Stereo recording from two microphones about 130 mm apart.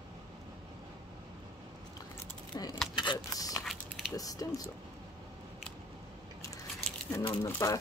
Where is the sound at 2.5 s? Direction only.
30° left (ahead or behind).